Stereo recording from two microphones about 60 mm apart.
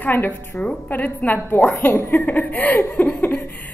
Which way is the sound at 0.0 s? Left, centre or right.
Left.